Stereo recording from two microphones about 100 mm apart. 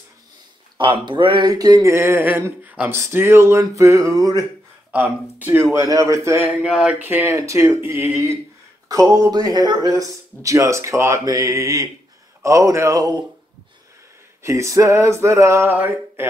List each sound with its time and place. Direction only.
0.7 s speech: 55° right (ahead or behind)
1.5 s speech: 40° right (ahead or behind)
4.9 s speech: 15° right (ahead or behind)
6.4 s speech: 10° right (ahead or behind)
8.8 s speech: 35° right (ahead or behind)
14.4 s speech: 30° right (ahead or behind)
15.7 s a sound: 15° right (ahead or behind)